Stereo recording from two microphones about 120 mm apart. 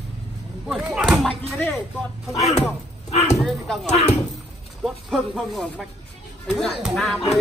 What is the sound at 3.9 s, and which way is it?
Speech, 70° left (ahead or behind).